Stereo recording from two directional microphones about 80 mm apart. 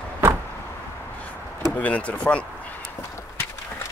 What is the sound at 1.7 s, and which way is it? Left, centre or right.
Speech, centre.